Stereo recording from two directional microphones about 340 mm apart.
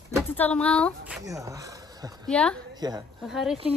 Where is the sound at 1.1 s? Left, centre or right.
Centre.